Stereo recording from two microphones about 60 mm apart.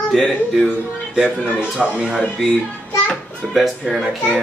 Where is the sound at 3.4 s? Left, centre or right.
Centre.